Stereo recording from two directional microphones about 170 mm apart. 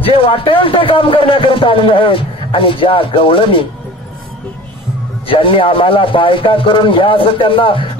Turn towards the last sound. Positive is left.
turn(degrees=30)  # may be behind; listen again after turning